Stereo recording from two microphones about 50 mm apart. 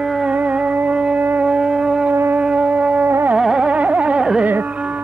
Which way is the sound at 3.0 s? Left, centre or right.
Right.